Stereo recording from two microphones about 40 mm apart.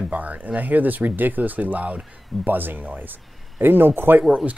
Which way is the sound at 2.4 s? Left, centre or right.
Right.